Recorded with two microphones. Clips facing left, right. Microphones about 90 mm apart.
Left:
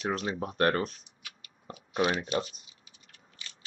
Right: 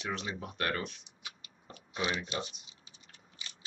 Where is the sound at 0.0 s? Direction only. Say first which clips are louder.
Left 6 dB; 40° left (ahead or behind).